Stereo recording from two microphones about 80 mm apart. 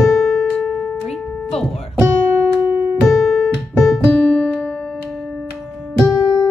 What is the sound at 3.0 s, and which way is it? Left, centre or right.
Music, centre.